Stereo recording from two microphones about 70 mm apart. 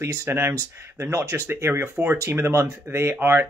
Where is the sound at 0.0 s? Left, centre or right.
Right.